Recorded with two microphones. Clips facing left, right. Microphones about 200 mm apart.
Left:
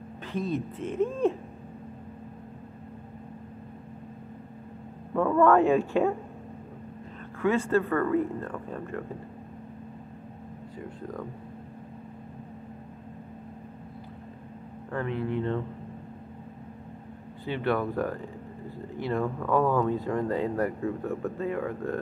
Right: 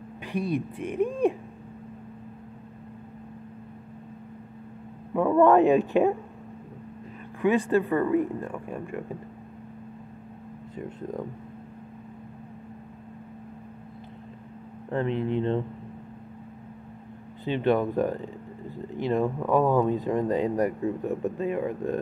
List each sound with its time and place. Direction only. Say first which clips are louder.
0.3 s speech: right 2 dB; 15° right (ahead or behind)
5.1 s speech: right 2 dB; 15° right (ahead or behind)
7.4 s speech: right 2 dB; 15° right (ahead or behind)
14.9 s speech: right 4 dB; 25° right (ahead or behind)
17.5 s speech: right 4 dB; 20° right (ahead or behind)